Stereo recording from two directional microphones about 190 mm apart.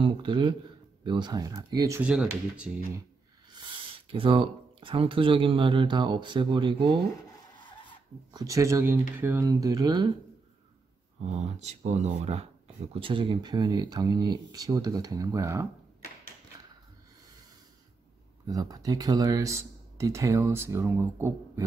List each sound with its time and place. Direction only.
0.0 s speech: 25° right (ahead or behind); by 2.7 s 5° right (ahead or behind)
3.5 s speech: 25° right (ahead or behind)
7.2 s a sound: 20° left (ahead or behind)
8.3 s speech: 20° right (ahead or behind)
11.6 s speech: 35° right (ahead or behind); by 15.6 s 15° right (ahead or behind)
18.5 s speech: 20° right (ahead or behind)